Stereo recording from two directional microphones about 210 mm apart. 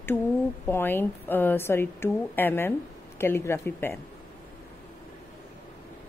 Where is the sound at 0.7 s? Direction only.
10° left (ahead or behind).